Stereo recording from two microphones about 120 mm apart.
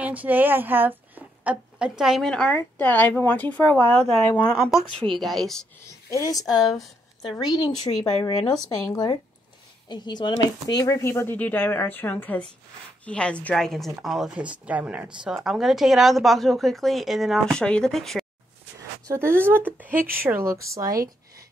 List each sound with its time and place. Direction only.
0.0 s a woman's voice: 15° right (ahead or behind); by 4.2 s 10° left (ahead or behind)
4.5 s a woman's voice: centre (ahead or behind)
6.0 s a woman's voice: 25° left (ahead or behind); by 18.2 s 5° left (ahead or behind)
19.0 s speech: 20° right (ahead or behind)